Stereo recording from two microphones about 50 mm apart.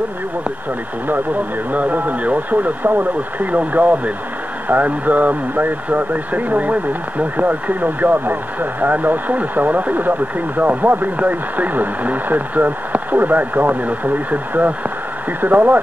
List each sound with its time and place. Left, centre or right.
1.0 s speech: right